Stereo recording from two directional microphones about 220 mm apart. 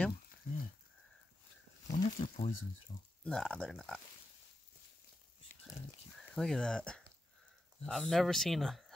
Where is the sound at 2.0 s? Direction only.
30° left (ahead or behind).